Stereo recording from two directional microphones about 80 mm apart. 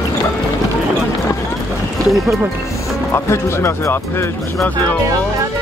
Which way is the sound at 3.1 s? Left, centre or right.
Left.